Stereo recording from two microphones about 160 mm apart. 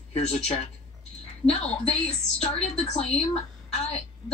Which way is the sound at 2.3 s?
40° left (ahead or behind).